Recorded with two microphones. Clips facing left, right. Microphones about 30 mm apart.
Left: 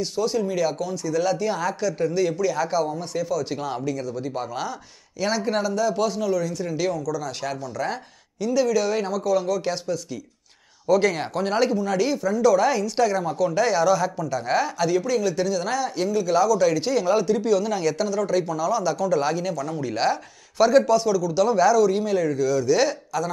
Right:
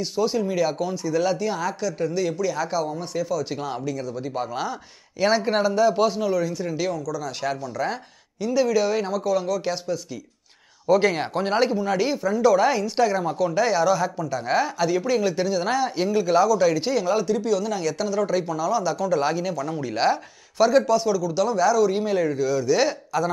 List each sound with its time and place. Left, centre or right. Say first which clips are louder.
0.0 s speech: even; centre
1.4 s speech: left 1 dB; centre
5.2 s speech: right 3 dB; centre
6.6 s speech: left 1 dB; centre
10.9 s speech: right 1 dB; right
15.0 s speech: even; right
21.5 s speech: left 2 dB; centre
21.7 s speech: left 1 dB; centre